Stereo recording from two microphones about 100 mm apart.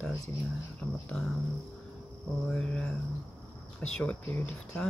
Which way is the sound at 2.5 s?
10° left (ahead or behind).